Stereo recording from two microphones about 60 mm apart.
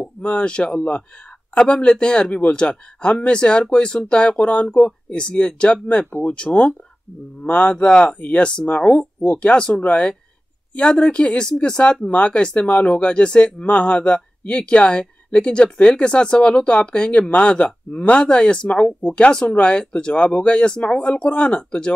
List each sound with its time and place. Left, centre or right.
0.2 s speech: centre